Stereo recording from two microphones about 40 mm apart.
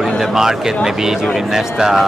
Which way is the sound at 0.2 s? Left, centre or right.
Centre.